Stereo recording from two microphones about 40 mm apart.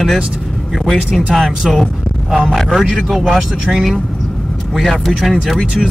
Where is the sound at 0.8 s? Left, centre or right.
Centre.